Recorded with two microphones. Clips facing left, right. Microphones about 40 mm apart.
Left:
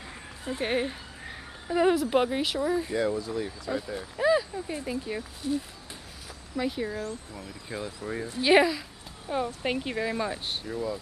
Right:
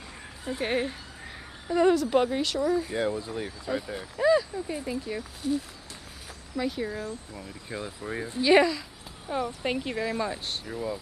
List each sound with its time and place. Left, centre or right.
0.5 s speech: centre
2.9 s speech: centre
3.2 s speech: right
3.6 s speech: centre
4.2 s speech: centre
4.7 s speech: centre
7.0 s speech: centre
8.4 s speech: centre
10.7 s speech: centre